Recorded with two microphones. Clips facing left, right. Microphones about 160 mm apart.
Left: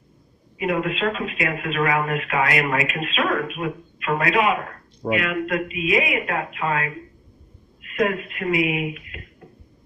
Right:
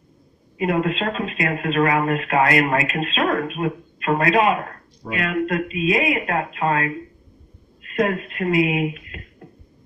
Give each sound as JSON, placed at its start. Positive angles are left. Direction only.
{"t": 0.6, "sound": "speech", "side_deg": -35}